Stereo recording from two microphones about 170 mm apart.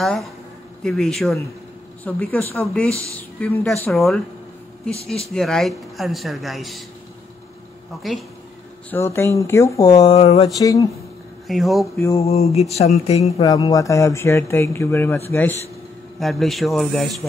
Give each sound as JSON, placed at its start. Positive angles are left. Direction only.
{"t": 0.0, "sound": "speech", "side_deg": 0}
{"t": 5.3, "sound": "speech", "side_deg": 5}
{"t": 8.0, "sound": "speech", "side_deg": 0}
{"t": 8.9, "sound": "speech", "side_deg": 15}
{"t": 10.0, "sound": "speech", "side_deg": 35}
{"t": 10.6, "sound": "speech", "side_deg": 20}
{"t": 11.4, "sound": "speech", "side_deg": 0}
{"t": 12.2, "sound": "speech", "side_deg": 40}
{"t": 13.5, "sound": "speech", "side_deg": 20}
{"t": 16.2, "sound": "speech", "side_deg": 0}